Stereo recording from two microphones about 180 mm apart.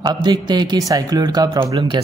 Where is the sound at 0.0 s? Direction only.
25° right (ahead or behind).